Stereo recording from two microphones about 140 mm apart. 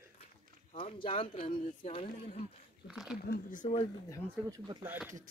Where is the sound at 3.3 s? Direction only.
75° left (ahead or behind).